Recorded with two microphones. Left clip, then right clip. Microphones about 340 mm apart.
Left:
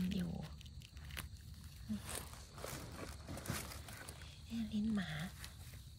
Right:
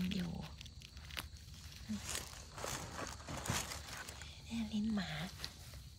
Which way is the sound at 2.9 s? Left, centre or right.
Right.